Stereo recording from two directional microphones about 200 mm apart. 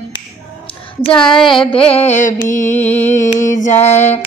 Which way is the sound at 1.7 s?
30° left (ahead or behind).